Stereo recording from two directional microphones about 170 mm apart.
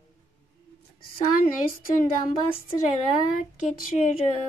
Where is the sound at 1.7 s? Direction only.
55° left (ahead or behind).